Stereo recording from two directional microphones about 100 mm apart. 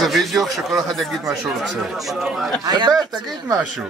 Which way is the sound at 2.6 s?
40° right (ahead or behind).